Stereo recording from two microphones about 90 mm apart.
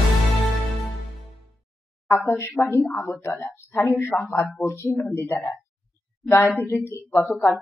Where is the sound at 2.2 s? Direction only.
25° left (ahead or behind).